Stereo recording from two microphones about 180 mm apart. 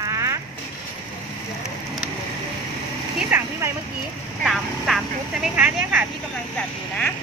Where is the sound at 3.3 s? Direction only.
15° right (ahead or behind).